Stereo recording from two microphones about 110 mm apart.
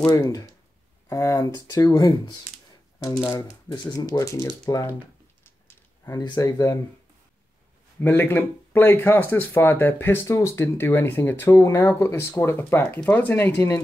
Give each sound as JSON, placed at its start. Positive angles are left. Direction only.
{"t": 0.0, "sound": "speech", "side_deg": 30}
{"t": 6.2, "sound": "speech", "side_deg": 30}
{"t": 8.0, "sound": "speech", "side_deg": 15}